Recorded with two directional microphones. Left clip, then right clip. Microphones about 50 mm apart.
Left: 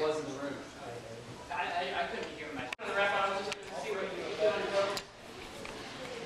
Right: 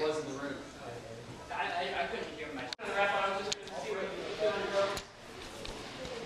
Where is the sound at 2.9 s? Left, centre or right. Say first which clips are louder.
Even; left.